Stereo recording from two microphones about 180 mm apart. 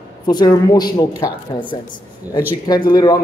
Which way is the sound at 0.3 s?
25° left (ahead or behind).